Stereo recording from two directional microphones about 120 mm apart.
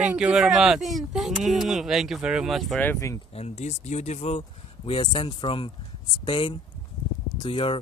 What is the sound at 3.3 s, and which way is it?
Speech, 65° left (ahead or behind).